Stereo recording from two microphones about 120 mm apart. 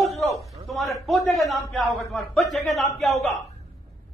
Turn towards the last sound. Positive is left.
turn(degrees=0)  # may be behind; listen again after turning